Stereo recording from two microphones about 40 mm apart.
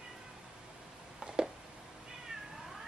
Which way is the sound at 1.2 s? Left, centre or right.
Right.